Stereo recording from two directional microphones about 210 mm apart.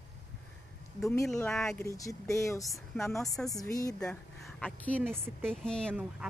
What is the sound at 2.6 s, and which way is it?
Speech, centre (ahead or behind).